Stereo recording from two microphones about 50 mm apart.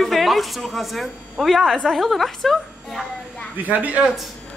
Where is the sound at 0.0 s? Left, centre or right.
Centre.